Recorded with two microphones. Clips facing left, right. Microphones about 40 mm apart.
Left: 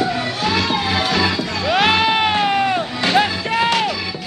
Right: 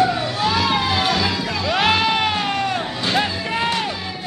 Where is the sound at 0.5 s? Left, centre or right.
Centre.